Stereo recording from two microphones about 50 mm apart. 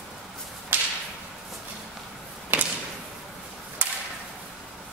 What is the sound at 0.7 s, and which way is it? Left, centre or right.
Whip, right.